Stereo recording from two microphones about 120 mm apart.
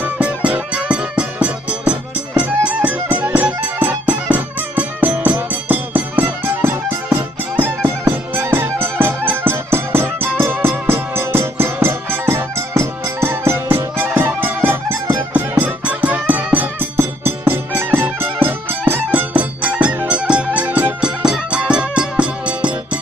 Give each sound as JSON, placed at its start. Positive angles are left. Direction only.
{"t": 0.0, "sound": "music", "side_deg": -10}